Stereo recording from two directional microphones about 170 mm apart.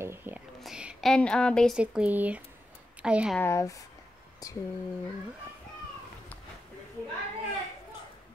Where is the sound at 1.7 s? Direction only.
5° right (ahead or behind).